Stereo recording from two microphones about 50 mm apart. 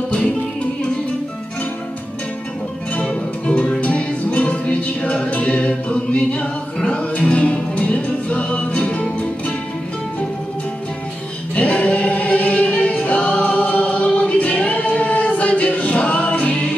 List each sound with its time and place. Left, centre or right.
3.0 s music: left
11.5 s choir: left